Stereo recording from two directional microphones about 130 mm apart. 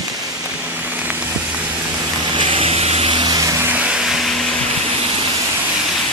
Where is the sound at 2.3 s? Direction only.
45° right (ahead or behind).